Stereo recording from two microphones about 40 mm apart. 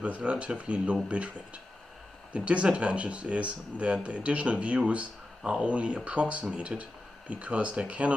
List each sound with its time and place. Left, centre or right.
0.0 s speech: right